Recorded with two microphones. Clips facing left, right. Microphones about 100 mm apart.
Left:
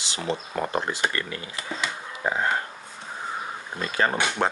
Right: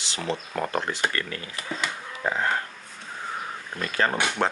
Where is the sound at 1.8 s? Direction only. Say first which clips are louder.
Left 1 dB; 15° left (ahead or behind).